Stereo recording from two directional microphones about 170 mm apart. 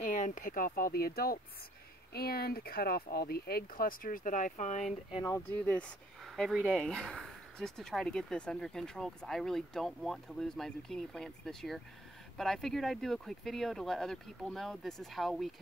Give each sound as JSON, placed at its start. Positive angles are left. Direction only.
{"t": 0.0, "sound": "speech", "side_deg": 50}
{"t": 5.6, "sound": "speech", "side_deg": 5}